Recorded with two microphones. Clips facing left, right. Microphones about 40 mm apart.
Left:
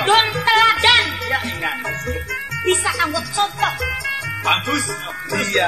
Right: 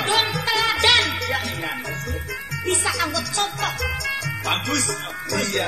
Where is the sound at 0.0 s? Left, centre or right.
Left.